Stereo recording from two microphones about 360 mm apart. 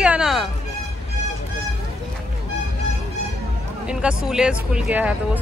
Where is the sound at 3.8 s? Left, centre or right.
Centre.